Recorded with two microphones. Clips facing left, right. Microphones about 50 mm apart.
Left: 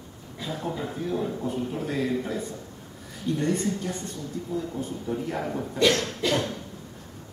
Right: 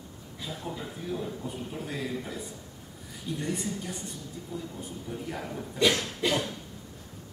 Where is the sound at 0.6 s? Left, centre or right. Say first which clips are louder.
Left 7 dB; left.